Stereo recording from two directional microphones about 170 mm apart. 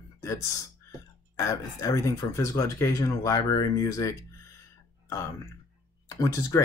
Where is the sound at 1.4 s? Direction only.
20° left (ahead or behind).